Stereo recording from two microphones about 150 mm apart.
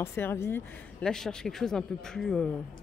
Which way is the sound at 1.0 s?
5° left (ahead or behind).